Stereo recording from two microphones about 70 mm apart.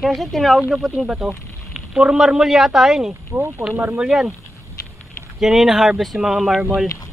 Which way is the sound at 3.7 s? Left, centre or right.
Right.